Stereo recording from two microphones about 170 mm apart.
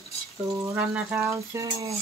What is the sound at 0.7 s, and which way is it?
Speech, 10° right (ahead or behind).